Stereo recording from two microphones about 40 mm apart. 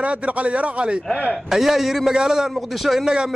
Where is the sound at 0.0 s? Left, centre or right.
Right.